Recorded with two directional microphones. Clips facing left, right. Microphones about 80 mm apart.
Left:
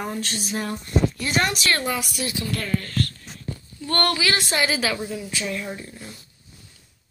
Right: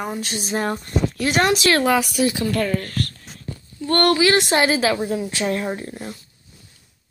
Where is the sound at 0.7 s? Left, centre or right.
Right.